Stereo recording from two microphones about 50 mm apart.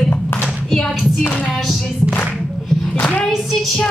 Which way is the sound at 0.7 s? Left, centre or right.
Centre.